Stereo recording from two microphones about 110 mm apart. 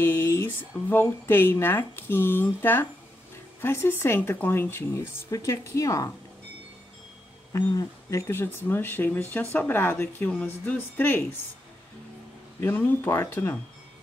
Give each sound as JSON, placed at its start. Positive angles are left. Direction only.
{"t": 0.0, "sound": "speech", "side_deg": 20}
{"t": 7.5, "sound": "speech", "side_deg": 30}
{"t": 12.5, "sound": "speech", "side_deg": 20}